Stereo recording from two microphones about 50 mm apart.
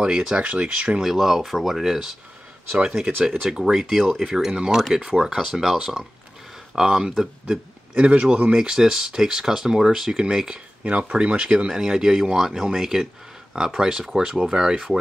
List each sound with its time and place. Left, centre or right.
0.0 s speech: centre
0.9 s speech: centre
3.3 s speech: centre